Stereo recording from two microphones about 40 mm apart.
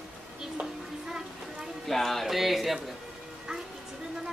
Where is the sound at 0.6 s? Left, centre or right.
Centre.